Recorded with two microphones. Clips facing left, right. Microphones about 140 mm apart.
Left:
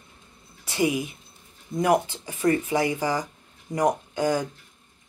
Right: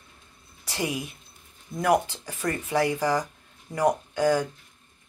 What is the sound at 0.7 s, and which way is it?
Speech, 10° left (ahead or behind).